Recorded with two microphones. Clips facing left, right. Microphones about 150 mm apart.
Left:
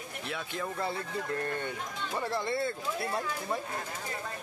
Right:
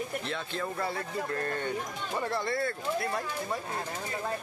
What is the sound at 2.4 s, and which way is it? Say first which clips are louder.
Speech: right 1 dB; 25° left (ahead or behind).